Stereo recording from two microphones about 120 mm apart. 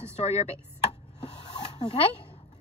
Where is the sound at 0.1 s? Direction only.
65° left (ahead or behind).